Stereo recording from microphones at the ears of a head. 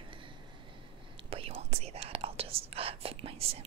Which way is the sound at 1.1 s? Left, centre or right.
Right.